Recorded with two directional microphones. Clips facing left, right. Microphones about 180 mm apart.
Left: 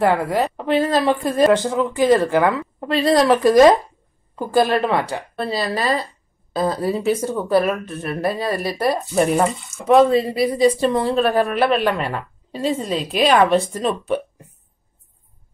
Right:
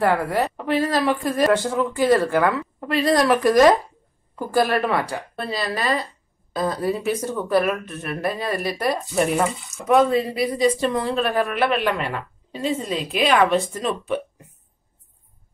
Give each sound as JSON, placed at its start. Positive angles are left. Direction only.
{"t": 0.0, "sound": "a woman's voice", "side_deg": 20}